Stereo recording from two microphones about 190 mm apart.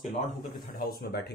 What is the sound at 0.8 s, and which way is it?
Speech, 55° left (ahead or behind).